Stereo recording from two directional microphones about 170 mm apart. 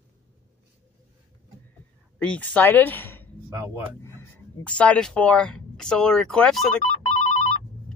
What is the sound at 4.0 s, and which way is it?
Speech, 15° left (ahead or behind).